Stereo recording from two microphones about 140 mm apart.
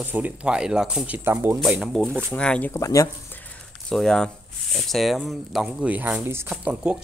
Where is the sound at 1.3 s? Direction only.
20° right (ahead or behind).